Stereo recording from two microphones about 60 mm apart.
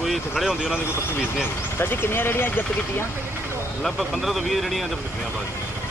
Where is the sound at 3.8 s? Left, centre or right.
Centre.